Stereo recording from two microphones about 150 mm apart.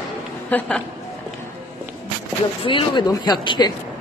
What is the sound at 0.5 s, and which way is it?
Speech, 10° left (ahead or behind).